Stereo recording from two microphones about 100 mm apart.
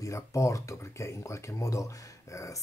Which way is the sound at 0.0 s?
30° left (ahead or behind).